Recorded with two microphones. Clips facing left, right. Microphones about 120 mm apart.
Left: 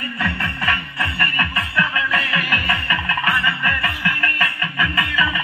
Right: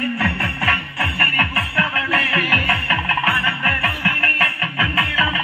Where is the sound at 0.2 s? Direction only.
40° right (ahead or behind).